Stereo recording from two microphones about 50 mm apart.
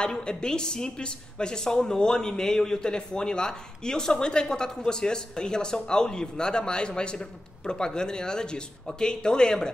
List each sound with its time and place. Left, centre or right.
0.0 s a woman's voice: centre